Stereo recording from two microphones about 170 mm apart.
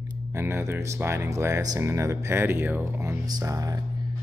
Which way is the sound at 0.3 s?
15° right (ahead or behind).